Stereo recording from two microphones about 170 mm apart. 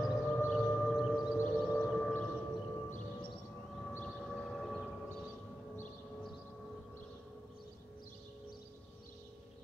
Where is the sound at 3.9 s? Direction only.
10° left (ahead or behind).